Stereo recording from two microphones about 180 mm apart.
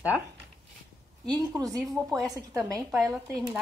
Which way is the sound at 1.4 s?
20° right (ahead or behind).